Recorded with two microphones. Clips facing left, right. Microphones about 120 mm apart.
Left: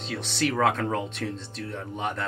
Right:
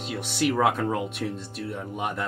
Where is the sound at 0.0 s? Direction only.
10° right (ahead or behind).